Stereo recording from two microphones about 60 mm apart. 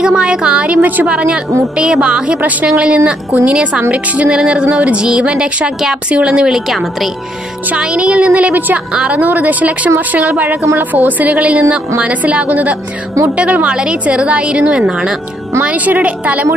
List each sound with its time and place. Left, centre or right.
0.0 s a woman's voice: centre
7.7 s a woman's voice: centre